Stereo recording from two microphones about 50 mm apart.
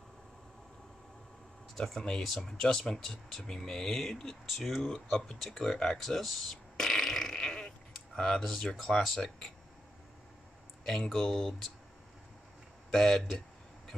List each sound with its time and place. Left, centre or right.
1.8 s speech: centre
5.4 s fart: centre
8.2 s speech: centre
10.9 s speech: centre
12.9 s speech: centre